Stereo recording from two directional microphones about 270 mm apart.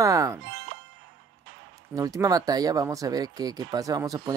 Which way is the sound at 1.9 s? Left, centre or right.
Centre.